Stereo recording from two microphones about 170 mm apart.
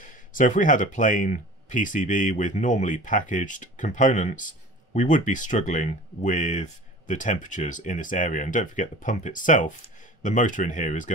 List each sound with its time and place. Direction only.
0.0 s speech: 50° left (ahead or behind)